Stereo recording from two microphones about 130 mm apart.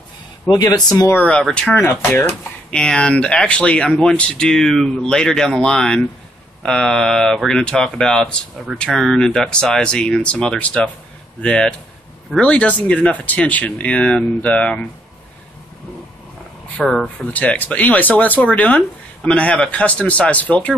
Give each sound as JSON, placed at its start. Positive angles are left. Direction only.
{"t": 0.5, "sound": "speech", "side_deg": 30}
{"t": 1.1, "sound": "speech", "side_deg": 10}
{"t": 16.8, "sound": "speech", "side_deg": 5}